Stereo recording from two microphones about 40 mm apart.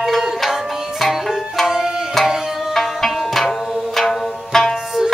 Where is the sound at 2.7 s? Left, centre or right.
Centre.